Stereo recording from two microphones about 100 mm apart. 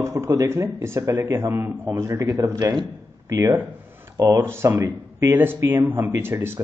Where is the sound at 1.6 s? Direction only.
20° right (ahead or behind).